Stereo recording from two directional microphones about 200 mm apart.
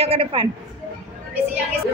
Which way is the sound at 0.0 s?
30° right (ahead or behind).